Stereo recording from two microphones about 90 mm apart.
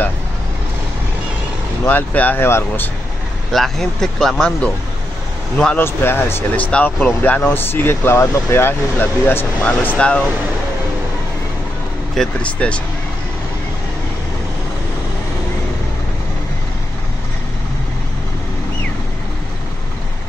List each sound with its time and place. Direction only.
1.9 s speech: 20° left (ahead or behind)
3.5 s speech: 5° left (ahead or behind)
5.8 s speech: 25° left (ahead or behind)
12.2 s speech: 15° left (ahead or behind)